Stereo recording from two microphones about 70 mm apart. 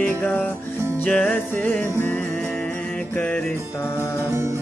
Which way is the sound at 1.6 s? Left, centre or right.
Left.